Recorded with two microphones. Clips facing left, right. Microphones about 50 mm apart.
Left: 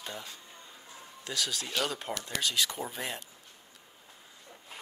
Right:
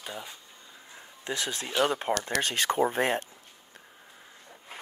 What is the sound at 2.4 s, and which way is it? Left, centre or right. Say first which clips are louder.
Speech: right 5 dB; right.